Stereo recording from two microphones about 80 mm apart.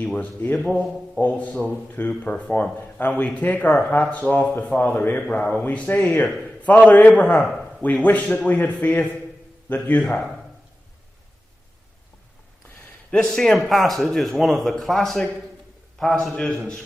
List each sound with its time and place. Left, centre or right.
0.0 s a sound: centre
0.4 s a man's voice: left
13.1 s a man's voice: centre